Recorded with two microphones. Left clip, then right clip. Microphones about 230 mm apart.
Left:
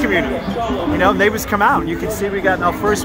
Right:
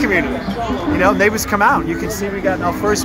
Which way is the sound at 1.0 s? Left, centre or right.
Centre.